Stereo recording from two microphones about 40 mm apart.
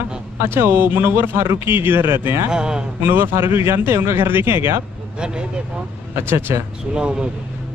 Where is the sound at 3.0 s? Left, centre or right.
Right.